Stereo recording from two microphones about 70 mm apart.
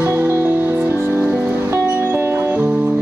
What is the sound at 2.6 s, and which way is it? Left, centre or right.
Music, centre.